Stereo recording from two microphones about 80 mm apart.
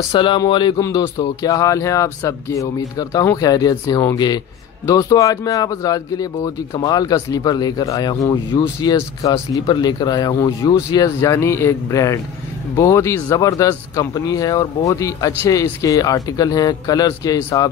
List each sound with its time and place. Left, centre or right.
0.1 s speech: left
0.5 s speech: left
0.7 s speech: left
9.7 s speech: left
11.1 s speech: left